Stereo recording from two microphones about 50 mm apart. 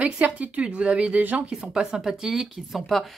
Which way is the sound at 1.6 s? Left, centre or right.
Right.